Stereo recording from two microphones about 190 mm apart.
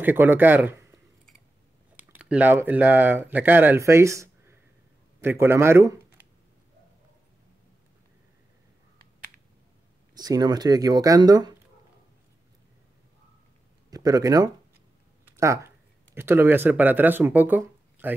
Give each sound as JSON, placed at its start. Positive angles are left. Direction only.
{"t": 0.0, "sound": "speech", "side_deg": -10}
{"t": 2.0, "sound": "speech", "side_deg": -5}
{"t": 10.1, "sound": "speech", "side_deg": -20}
{"t": 13.8, "sound": "speech", "side_deg": -20}